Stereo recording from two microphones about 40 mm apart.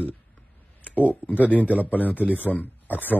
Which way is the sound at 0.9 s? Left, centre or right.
Left.